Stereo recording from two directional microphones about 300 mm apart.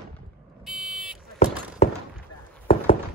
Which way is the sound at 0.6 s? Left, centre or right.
Centre.